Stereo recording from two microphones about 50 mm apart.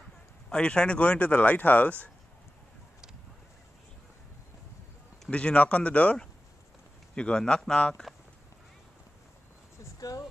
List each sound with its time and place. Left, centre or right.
0.5 s speech: centre
5.3 s speech: left
7.2 s a man's voice: centre